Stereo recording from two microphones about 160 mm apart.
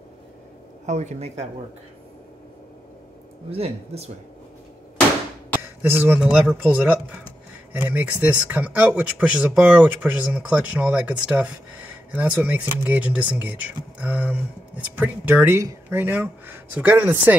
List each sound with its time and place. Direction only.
0.8 s speech: 45° right (ahead or behind)
3.4 s speech: 40° right (ahead or behind)
5.8 s speech: 15° right (ahead or behind)
13.9 s a sound: 10° right (ahead or behind)
15.0 s speech: 10° right (ahead or behind)